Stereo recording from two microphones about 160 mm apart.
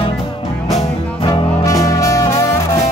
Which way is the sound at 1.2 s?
30° left (ahead or behind).